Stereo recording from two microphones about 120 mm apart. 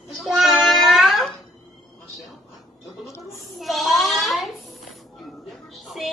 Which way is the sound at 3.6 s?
Centre (ahead or behind).